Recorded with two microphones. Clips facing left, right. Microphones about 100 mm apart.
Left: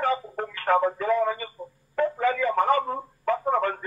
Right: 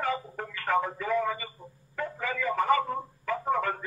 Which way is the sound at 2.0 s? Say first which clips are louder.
Left 9 dB; 50° left (ahead or behind).